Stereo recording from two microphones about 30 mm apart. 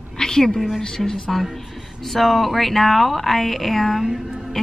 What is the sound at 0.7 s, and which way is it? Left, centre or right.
Speech, centre.